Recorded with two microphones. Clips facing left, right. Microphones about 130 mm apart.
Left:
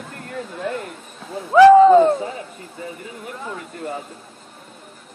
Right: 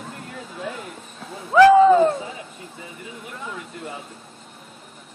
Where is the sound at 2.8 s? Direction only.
50° left (ahead or behind).